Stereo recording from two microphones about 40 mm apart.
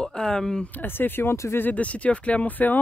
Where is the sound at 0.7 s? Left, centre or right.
Left.